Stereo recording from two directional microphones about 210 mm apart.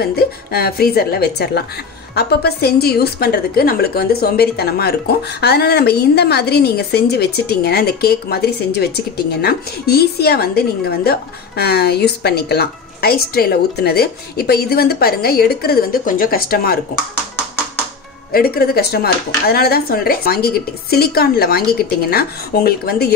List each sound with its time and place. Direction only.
0.0 s a woman's voice: 45° left (ahead or behind)
18.3 s a woman's voice: 45° left (ahead or behind)